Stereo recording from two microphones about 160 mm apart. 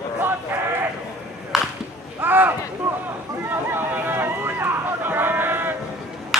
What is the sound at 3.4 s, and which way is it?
Run, 15° right (ahead or behind).